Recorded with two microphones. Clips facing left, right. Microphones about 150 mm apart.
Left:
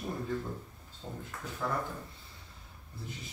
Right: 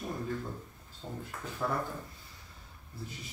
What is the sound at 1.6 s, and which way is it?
Speech, 10° right (ahead or behind).